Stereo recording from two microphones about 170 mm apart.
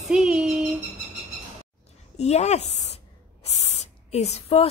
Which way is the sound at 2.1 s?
40° left (ahead or behind).